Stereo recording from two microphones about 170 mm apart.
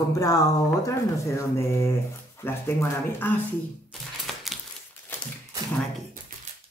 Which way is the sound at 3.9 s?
Centre (ahead or behind).